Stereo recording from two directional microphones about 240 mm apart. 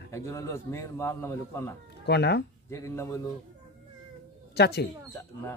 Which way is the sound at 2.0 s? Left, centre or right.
Left.